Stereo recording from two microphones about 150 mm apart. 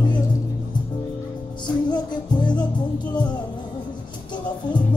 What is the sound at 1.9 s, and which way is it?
Music, 30° left (ahead or behind).